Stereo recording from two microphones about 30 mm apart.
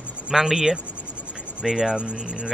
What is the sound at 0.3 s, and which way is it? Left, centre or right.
Speech, centre.